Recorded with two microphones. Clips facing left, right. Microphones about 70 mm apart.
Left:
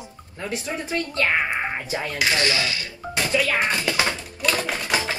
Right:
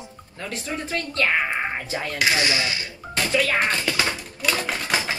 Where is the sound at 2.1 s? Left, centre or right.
Centre.